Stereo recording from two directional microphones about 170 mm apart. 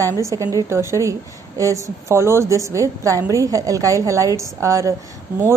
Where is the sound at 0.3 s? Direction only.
20° right (ahead or behind).